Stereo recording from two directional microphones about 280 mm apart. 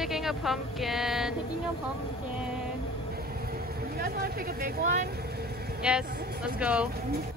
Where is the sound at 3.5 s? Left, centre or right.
Right.